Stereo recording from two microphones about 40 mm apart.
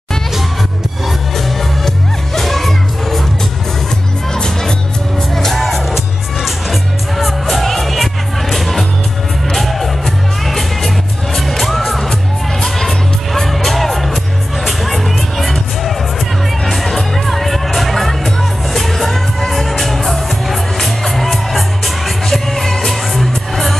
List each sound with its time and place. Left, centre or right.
1.0 s music: centre
4.3 s music: centre